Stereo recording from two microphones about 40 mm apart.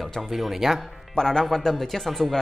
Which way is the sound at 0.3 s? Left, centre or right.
Centre.